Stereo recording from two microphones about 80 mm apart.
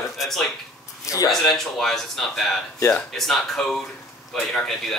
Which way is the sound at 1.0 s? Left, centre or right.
Left.